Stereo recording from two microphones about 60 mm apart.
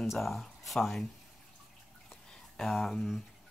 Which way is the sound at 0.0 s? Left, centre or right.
Centre.